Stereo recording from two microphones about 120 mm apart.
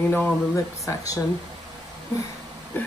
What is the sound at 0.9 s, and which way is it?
Speech, 25° left (ahead or behind).